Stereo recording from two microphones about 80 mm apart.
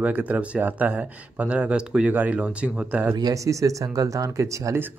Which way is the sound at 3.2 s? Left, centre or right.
Right.